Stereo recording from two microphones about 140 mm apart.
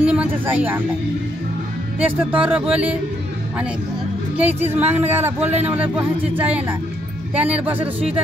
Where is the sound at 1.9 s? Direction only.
10° right (ahead or behind).